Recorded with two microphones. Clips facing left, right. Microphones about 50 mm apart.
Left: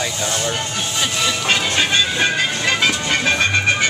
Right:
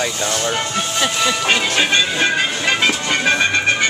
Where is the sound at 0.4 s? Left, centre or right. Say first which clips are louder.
Right 3 dB; right.